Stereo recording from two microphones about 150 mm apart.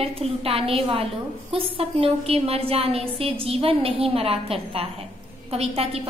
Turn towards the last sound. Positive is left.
turn(degrees=-40)  # may be behind; listen again after turning